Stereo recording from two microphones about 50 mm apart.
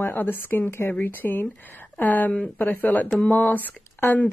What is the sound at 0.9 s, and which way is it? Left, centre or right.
Speech, left.